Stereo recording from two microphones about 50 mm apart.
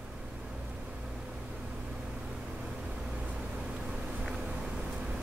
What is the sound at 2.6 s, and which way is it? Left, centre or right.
Vehicle, centre.